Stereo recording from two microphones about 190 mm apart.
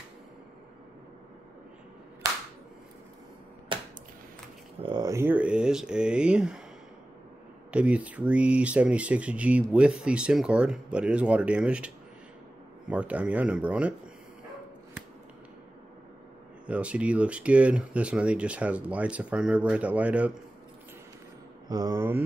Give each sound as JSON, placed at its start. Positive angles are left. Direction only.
{"t": 4.8, "sound": "speech", "side_deg": -20}
{"t": 7.7, "sound": "speech", "side_deg": -5}
{"t": 12.9, "sound": "speech", "side_deg": -5}
{"t": 16.6, "sound": "speech", "side_deg": -5}
{"t": 21.6, "sound": "speech", "side_deg": -20}